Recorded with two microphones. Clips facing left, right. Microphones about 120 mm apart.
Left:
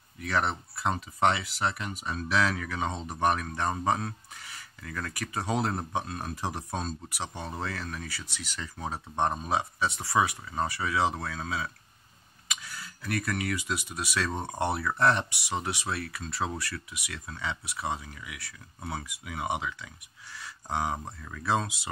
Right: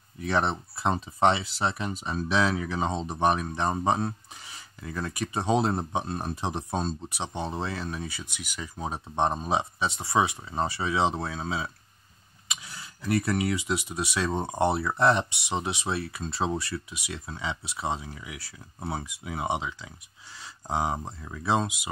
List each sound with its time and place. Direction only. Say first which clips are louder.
0.2 s speech: right 3 dB; 25° right (ahead or behind)